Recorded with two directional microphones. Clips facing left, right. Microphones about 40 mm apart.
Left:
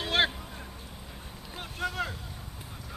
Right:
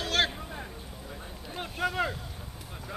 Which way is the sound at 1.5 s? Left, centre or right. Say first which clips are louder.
Right 3 dB; centre.